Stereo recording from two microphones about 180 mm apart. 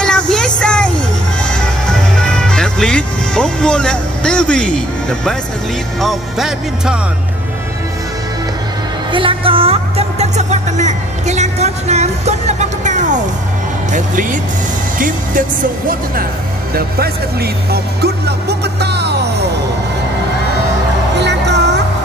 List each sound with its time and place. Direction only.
0.0 s vehicle: 5° left (ahead or behind)
1.4 s music: 5° left (ahead or behind)
5.9 s speech: centre (ahead or behind)
9.1 s music: 30° right (ahead or behind)
13.9 s speech: 45° right (ahead or behind)
16.7 s music: 60° right (ahead or behind)
21.2 s music: 70° right (ahead or behind)